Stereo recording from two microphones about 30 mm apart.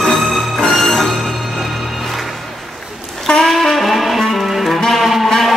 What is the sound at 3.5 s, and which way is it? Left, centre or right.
Music, centre.